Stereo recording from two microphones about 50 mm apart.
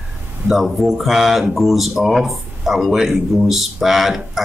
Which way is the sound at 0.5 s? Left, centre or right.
Centre.